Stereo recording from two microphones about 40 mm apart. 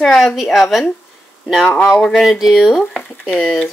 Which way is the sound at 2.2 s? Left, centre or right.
Centre.